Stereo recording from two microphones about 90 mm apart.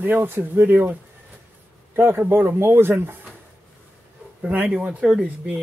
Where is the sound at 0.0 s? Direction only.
25° right (ahead or behind).